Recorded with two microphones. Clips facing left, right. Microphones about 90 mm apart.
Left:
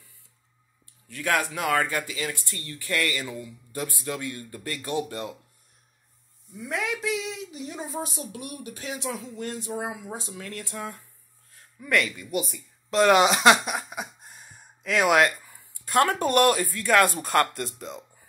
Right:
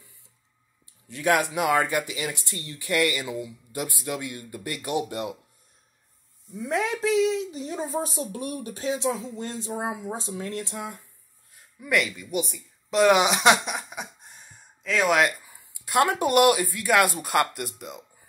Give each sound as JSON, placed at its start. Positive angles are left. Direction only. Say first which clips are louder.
{"t": 1.0, "sound": "speech", "louder": "right 3 dB", "side_deg": -20}
{"t": 6.6, "sound": "a woman's voice", "louder": "right 4 dB", "side_deg": -30}
{"t": 11.8, "sound": "speech", "louder": "even", "side_deg": -10}
{"t": 15.1, "sound": "speech", "louder": "left 2 dB", "side_deg": -10}